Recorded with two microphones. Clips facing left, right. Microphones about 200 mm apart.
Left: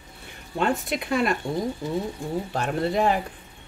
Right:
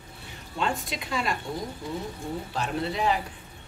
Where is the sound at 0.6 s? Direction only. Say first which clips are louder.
Left 5 dB; 55° left (ahead or behind).